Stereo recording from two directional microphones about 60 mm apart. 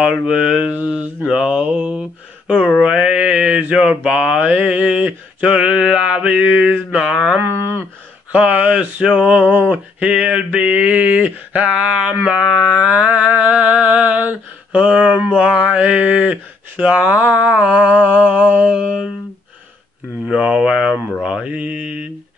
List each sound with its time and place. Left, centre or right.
0.0 s mantra: centre
1.2 s speech: centre
2.8 s mantra: centre
4.4 s mantra: right
7.4 s a sound: right
8.3 s mantra: right
12.4 s mantra: centre
12.7 s mantra: centre
20.2 s speech: centre
21.2 s mantra: centre
21.5 s mantra: right